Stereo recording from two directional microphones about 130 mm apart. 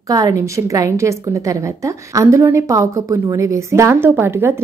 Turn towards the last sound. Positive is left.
turn(degrees=-20)  # may be behind; listen again after turning